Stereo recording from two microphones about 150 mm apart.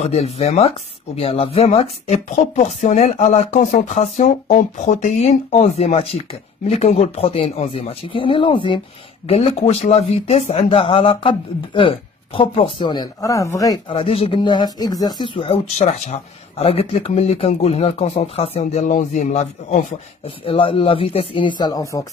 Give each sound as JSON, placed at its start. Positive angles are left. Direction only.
{"t": 0.0, "sound": "speech", "side_deg": 45}
{"t": 13.8, "sound": "speech", "side_deg": 40}
{"t": 20.4, "sound": "speech", "side_deg": 35}